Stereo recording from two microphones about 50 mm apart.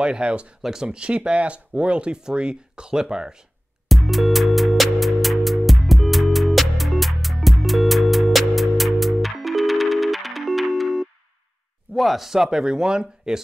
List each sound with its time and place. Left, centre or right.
0.0 s speech: centre
0.6 s speech: centre
0.8 s speech: right
3.9 s music: centre
11.9 s speech: centre